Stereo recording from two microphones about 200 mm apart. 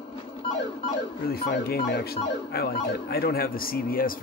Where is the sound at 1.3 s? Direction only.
50° left (ahead or behind).